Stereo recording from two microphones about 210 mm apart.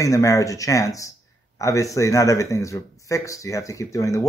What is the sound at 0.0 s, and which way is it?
Speech, 15° left (ahead or behind).